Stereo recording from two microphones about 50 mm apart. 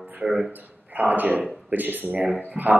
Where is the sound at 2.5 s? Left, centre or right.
Right.